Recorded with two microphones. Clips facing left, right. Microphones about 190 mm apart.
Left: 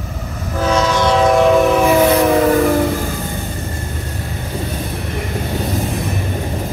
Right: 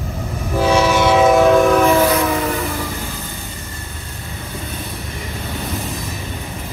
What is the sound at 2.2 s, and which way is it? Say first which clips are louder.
Train: left 8 dB; 50° left (ahead or behind).